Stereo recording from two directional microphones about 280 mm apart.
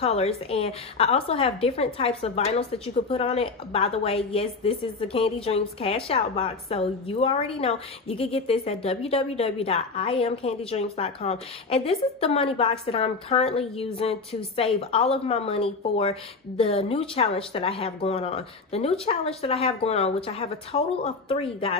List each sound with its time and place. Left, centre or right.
0.0 s a woman's voice: left